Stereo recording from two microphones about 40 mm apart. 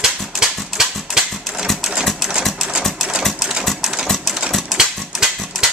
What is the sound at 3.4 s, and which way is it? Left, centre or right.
Typewriter, centre.